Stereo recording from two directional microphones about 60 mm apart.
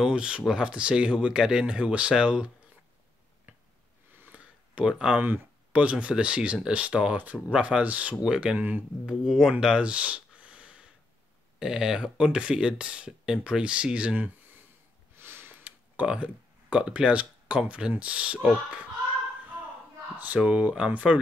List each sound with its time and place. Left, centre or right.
0.0 s speech: centre
4.3 s a sound: centre
5.2 s speech: right
8.5 s speech: right
9.0 s speech: centre; by 14.6 s right
15.1 s a sound: right
15.6 s a sound: right
16.7 s speech: centre
20.3 s speech: right